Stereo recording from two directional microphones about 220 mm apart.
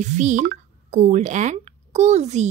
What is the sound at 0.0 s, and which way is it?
Speech, 35° right (ahead or behind).